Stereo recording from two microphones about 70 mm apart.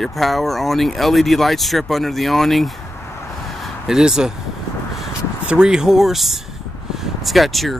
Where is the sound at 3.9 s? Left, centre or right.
Centre.